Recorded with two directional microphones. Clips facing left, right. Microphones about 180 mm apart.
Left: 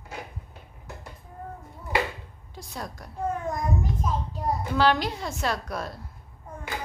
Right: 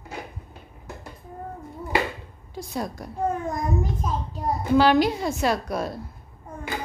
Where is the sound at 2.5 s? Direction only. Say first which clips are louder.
Right 7 dB; 10° right (ahead or behind).